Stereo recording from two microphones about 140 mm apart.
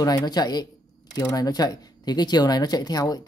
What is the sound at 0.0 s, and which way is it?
Speech, 25° left (ahead or behind).